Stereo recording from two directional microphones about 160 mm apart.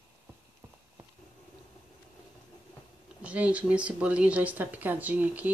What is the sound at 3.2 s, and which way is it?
Speech, 10° right (ahead or behind).